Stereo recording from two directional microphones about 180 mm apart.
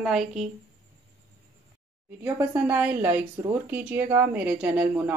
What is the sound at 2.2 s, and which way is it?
Speech, 10° right (ahead or behind).